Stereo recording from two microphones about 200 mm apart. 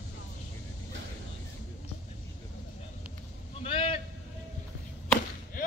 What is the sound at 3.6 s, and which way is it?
Speech, 30° left (ahead or behind).